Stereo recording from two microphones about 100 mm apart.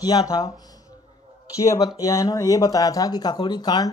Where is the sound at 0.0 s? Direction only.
40° left (ahead or behind).